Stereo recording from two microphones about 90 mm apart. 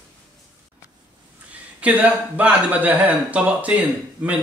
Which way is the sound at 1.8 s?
15° right (ahead or behind).